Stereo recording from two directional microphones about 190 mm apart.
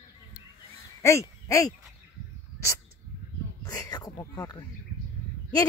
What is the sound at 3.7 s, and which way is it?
Speech, 20° left (ahead or behind).